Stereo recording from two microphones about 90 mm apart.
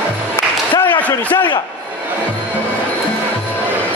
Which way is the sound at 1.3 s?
55° left (ahead or behind).